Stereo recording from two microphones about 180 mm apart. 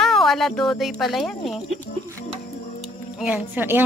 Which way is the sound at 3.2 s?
10° right (ahead or behind).